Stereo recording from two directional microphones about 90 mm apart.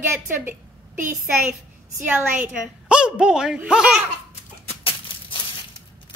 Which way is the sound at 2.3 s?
15° right (ahead or behind).